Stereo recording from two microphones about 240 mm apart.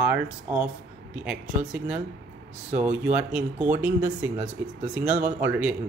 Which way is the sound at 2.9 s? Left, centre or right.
Centre.